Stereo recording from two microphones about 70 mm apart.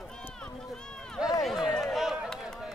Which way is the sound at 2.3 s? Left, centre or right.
Centre.